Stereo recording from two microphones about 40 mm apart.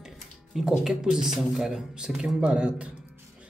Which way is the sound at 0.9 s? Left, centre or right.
Centre.